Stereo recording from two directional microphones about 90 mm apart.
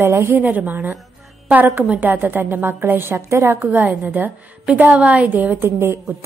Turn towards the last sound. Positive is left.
turn(degrees=-30)  # may be behind; listen again after turning